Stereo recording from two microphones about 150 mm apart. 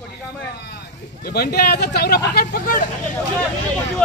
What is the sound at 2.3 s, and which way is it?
Speech, 80° left.